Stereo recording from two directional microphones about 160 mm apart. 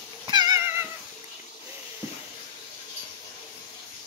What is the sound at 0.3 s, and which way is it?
Cat, 25° right (ahead or behind).